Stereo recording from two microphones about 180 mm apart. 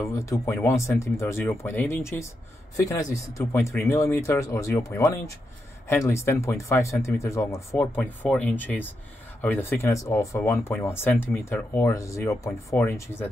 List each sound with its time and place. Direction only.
0.0 s speech: 15° left (ahead or behind)